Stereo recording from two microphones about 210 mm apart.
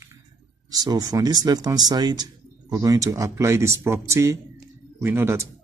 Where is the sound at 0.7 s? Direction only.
15° right (ahead or behind).